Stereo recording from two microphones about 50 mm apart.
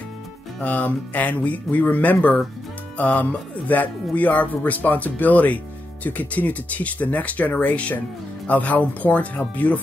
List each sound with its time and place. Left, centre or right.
0.6 s speech: left